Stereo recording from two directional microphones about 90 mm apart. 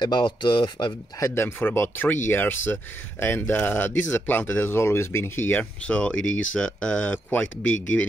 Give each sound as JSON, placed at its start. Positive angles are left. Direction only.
{"t": 0.0, "sound": "speech", "side_deg": 60}
{"t": 1.2, "sound": "speech", "side_deg": 30}